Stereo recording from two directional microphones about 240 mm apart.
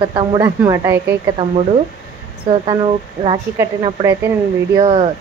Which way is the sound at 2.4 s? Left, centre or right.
Right.